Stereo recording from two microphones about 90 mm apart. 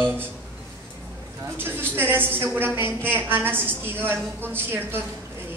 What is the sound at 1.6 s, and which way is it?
A woman's voice, 25° right (ahead or behind).